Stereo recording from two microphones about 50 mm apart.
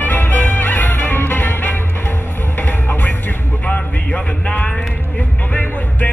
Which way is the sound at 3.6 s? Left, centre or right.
Left.